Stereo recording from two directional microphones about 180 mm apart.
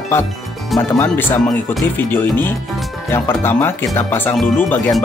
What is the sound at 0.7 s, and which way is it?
Speech, 10° left (ahead or behind).